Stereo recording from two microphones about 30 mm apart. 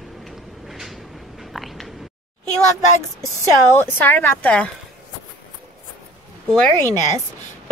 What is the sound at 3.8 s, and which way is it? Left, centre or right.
Speech, left.